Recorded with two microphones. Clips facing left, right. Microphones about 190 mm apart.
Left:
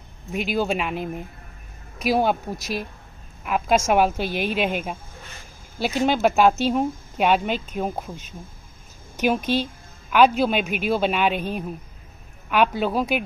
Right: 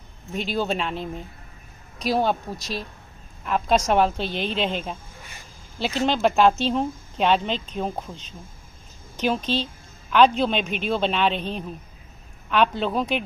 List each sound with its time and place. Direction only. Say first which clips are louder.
0.3 s a woman's voice: left 2 dB; 10° left (ahead or behind)